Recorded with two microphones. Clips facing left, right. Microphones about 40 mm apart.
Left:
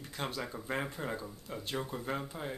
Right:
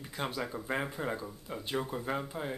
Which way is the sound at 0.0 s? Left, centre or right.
Centre.